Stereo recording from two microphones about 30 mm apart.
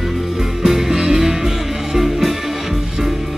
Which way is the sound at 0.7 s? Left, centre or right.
Centre.